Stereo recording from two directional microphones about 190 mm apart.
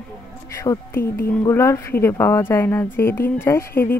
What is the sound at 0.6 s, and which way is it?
Speech, 20° left (ahead or behind).